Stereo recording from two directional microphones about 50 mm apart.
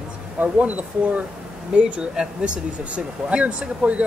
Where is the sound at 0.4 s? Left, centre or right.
Right.